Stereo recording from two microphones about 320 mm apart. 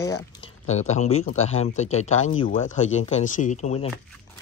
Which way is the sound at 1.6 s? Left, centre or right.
Centre.